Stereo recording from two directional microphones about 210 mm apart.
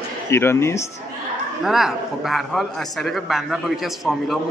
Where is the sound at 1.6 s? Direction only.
Centre (ahead or behind).